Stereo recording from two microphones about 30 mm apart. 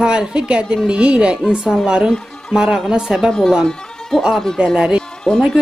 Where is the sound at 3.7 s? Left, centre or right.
Left.